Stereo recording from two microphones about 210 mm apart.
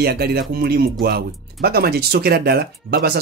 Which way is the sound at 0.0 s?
50° right (ahead or behind).